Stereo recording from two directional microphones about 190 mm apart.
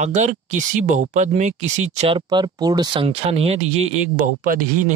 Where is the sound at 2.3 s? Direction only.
20° right (ahead or behind).